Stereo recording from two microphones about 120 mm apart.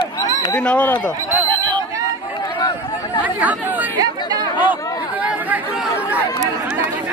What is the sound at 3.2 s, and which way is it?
Chatter, 15° right (ahead or behind).